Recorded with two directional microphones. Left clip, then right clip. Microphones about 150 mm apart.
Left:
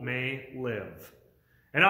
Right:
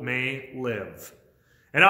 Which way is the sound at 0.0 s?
25° right (ahead or behind).